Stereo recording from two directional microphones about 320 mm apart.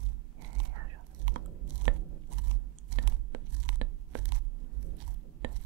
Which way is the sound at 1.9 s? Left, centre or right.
Right.